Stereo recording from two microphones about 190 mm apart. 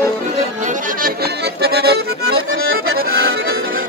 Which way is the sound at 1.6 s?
55° right (ahead or behind).